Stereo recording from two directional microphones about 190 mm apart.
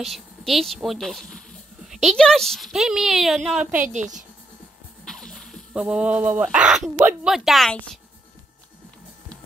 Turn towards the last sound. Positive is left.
turn(degrees=0)  # may be behind; listen again after turning